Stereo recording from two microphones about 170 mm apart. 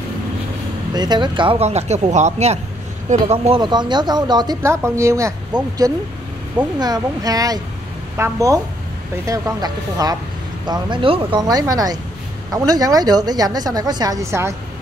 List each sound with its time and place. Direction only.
0.9 s speech: 25° right (ahead or behind)